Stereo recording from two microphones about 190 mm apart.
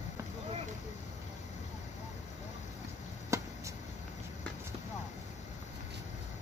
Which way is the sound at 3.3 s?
15° right (ahead or behind).